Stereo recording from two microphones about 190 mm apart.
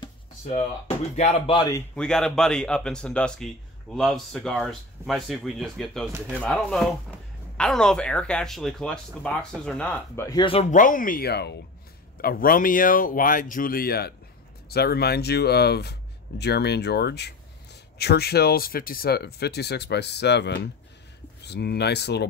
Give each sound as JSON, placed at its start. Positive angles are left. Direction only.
{"t": 0.5, "sound": "speech", "side_deg": 35}
{"t": 2.0, "sound": "speech", "side_deg": 5}
{"t": 10.7, "sound": "speech", "side_deg": 45}